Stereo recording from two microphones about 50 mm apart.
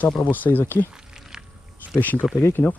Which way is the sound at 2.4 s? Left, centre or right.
Left.